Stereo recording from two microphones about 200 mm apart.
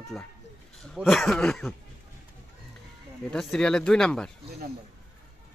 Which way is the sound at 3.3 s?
5° left (ahead or behind).